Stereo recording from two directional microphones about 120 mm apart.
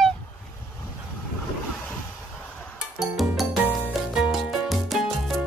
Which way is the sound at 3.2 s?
Centre (ahead or behind).